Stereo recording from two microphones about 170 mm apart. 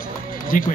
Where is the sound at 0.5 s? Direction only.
50° left (ahead or behind).